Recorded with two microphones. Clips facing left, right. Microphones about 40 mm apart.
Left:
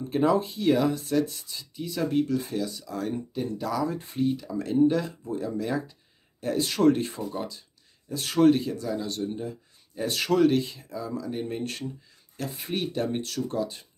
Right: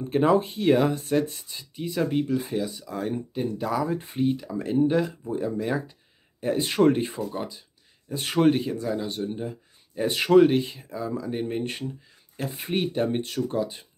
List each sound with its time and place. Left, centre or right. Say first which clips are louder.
0.1 s speech: right 3 dB; right
8.1 s speech: left 1 dB; right